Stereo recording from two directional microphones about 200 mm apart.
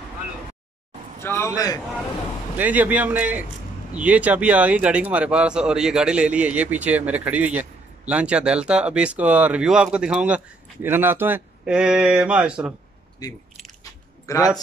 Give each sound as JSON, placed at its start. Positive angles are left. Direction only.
{"t": 1.2, "sound": "a man's voice", "side_deg": 15}
{"t": 2.5, "sound": "a man's voice", "side_deg": -10}
{"t": 14.2, "sound": "speech", "side_deg": 15}